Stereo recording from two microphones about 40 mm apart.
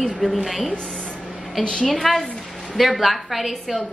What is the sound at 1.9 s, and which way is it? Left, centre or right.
Speech, centre.